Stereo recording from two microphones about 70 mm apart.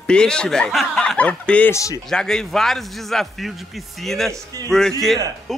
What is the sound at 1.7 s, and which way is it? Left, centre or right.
Speech, left.